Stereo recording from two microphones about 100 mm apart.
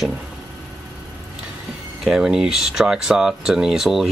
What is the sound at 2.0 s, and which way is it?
Speech, 5° right (ahead or behind).